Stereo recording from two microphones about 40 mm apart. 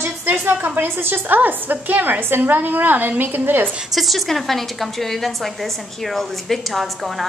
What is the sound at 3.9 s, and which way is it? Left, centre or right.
A woman's voice, centre.